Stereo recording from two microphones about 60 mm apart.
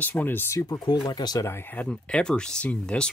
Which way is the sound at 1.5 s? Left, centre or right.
Left.